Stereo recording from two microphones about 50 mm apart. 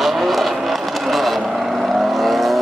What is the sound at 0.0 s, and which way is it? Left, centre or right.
Vehicle, centre.